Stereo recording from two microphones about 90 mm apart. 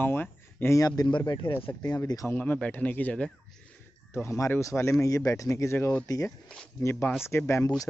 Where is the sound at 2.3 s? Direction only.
20° left (ahead or behind).